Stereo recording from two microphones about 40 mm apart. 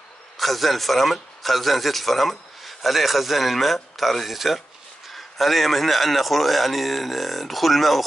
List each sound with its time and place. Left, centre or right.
0.4 s a man's voice: centre